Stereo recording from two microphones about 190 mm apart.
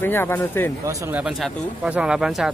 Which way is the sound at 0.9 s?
5° right (ahead or behind).